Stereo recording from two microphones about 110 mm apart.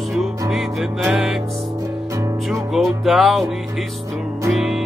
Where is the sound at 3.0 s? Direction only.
Centre (ahead or behind).